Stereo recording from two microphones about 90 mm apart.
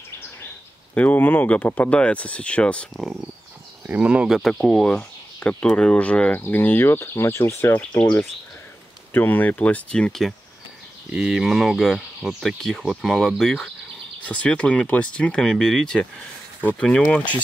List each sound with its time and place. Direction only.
0.9 s speech: 20° left (ahead or behind)
3.8 s speech: 15° right (ahead or behind)
4.4 s speech: 5° left (ahead or behind)
11.1 s speech: 5° right (ahead or behind)